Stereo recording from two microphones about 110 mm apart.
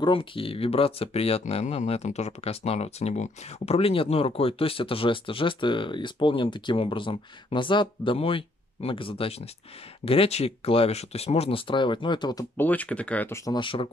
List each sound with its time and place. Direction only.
0.0 s speech: 50° left (ahead or behind)
12.5 s speech: 15° left (ahead or behind)
13.5 s speech: 50° left (ahead or behind)